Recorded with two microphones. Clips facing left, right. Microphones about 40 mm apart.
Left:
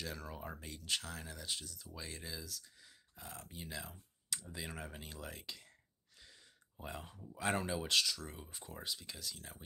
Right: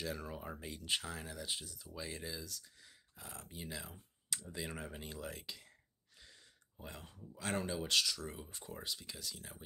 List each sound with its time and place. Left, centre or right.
0.3 s speech: centre
1.1 s speech: centre
4.3 s clicking: centre
6.8 s speech: centre
7.5 s speech: centre